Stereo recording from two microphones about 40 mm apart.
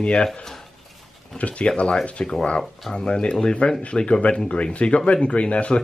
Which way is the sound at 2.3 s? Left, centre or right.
Left.